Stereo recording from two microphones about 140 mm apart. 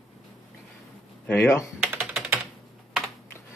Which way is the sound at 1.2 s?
10° left (ahead or behind).